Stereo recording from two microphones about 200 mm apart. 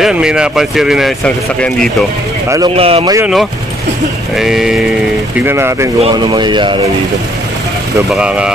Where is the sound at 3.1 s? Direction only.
5° right (ahead or behind).